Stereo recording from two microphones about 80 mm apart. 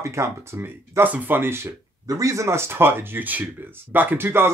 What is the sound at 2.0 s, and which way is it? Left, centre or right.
Speech, right.